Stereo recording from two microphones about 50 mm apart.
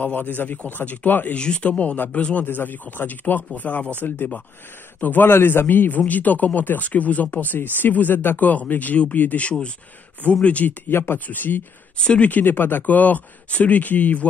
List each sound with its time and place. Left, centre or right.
0.0 s speech: left
1.3 s speech: left
2.4 s speech: left
9.5 s speech: left
10.9 s speech: left
11.1 s speech: left
12.0 s speech: left
12.3 s speech: left